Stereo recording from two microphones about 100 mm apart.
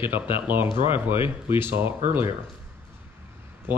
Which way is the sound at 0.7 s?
60° left (ahead or behind).